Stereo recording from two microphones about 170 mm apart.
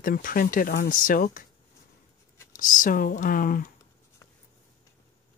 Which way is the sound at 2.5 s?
50° left (ahead or behind).